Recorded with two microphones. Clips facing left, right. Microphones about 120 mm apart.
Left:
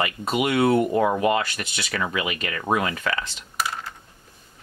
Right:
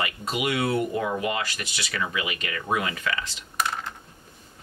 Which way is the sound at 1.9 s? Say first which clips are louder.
Left 3 dB; 40° left (ahead or behind).